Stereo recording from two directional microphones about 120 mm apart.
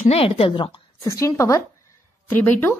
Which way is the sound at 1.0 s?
25° left (ahead or behind).